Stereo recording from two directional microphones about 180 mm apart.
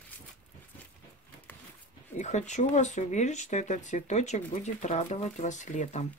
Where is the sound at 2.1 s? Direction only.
40° left (ahead or behind).